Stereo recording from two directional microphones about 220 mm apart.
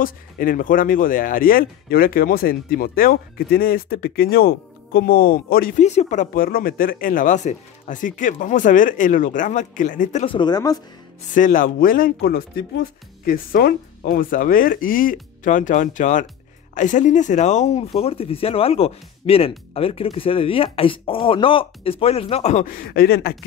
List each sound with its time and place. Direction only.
0.0 s speech: 40° left (ahead or behind)
10.2 s speech: 20° left (ahead or behind)
11.3 s speech: 35° left (ahead or behind)